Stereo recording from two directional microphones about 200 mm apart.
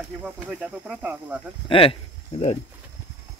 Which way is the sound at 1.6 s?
25° left (ahead or behind).